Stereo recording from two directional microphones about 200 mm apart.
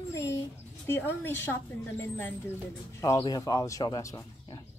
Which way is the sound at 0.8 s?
10° left (ahead or behind).